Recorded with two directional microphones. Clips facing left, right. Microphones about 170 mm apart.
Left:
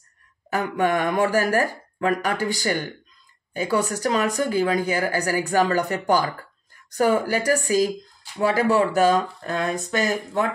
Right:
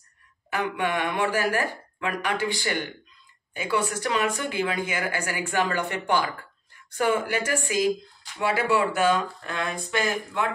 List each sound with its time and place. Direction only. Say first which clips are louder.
0.5 s speech: left 5 dB; 40° left (ahead or behind)